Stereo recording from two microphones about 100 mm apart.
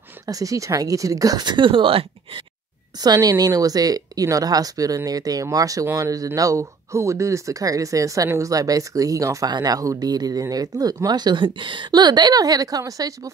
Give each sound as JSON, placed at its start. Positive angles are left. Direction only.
{"t": 0.3, "sound": "speech", "side_deg": -35}
{"t": 3.0, "sound": "speech", "side_deg": -40}